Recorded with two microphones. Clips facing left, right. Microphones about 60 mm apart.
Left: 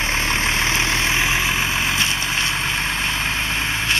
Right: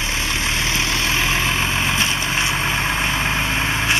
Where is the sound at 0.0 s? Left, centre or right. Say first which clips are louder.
Left 2 dB; left.